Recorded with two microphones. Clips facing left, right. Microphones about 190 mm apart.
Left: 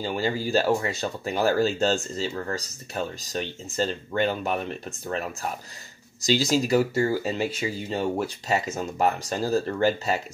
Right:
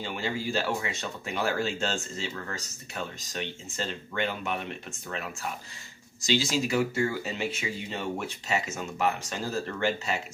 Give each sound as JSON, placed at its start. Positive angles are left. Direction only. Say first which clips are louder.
{"t": 0.0, "sound": "speech", "louder": "left 5 dB", "side_deg": 35}